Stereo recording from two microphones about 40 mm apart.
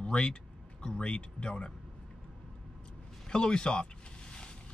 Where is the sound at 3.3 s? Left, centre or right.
Left.